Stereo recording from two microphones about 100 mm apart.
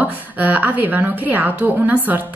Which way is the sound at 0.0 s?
15° right (ahead or behind).